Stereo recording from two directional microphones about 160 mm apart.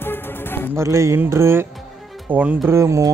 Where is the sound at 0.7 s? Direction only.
20° right (ahead or behind).